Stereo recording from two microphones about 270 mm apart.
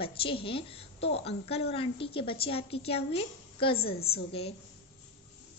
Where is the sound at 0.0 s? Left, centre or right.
Centre.